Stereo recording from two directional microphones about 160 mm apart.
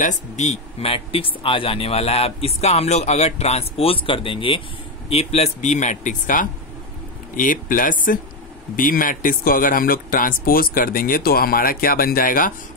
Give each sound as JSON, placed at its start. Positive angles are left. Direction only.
{"t": 0.0, "sound": "speech", "side_deg": 45}